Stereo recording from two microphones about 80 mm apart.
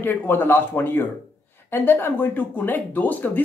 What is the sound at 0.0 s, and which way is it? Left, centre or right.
Speech, left.